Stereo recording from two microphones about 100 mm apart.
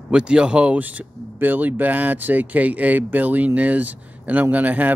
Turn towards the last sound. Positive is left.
turn(degrees=-15)  # may be behind; listen again after turning